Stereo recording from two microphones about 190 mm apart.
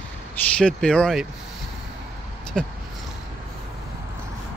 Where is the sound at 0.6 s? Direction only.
5° left (ahead or behind).